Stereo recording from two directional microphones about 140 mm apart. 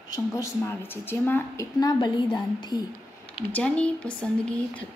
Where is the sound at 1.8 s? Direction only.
30° left (ahead or behind).